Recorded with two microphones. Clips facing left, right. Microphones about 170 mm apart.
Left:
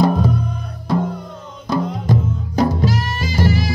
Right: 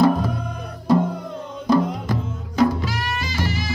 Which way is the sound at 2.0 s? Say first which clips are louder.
Left 6 dB; 35° left (ahead or behind).